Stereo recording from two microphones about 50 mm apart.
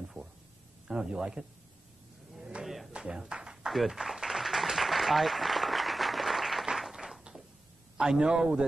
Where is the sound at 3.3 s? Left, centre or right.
Centre.